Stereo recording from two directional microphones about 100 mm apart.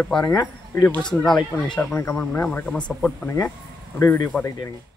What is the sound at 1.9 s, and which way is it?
Speech, 20° left (ahead or behind).